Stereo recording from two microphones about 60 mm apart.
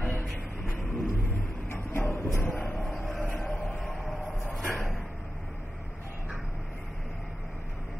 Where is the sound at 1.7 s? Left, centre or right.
Left.